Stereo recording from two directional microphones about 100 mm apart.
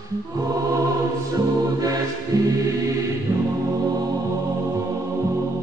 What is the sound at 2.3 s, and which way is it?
Music, 35° right (ahead or behind).